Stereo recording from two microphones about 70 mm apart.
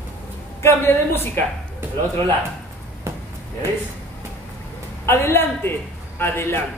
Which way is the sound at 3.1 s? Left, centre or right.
Right.